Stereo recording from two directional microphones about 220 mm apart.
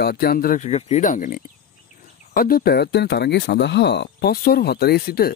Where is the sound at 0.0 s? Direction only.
45° left (ahead or behind).